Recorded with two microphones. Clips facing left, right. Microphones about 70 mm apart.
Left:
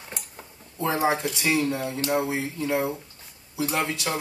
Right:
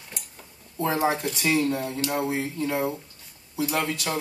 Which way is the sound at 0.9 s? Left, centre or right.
Left.